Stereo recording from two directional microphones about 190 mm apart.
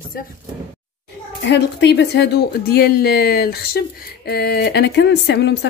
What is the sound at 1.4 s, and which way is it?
A woman's voice, 65° left (ahead or behind).